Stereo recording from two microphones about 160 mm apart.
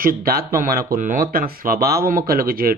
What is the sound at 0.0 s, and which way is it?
Speech, 65° right (ahead or behind).